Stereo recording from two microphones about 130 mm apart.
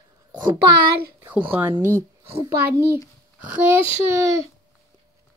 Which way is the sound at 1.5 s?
15° right (ahead or behind).